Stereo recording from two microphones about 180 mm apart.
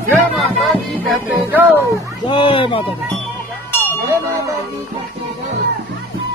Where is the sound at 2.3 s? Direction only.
30° left (ahead or behind).